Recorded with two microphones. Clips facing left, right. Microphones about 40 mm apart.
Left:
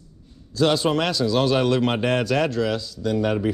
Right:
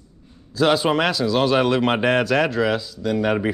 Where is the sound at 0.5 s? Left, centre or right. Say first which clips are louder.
Right 2 dB; centre.